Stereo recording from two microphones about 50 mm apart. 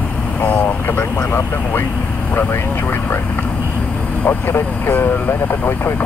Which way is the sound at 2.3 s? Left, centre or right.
Left.